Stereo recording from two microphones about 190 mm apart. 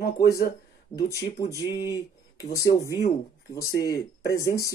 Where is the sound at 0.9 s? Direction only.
15° left (ahead or behind).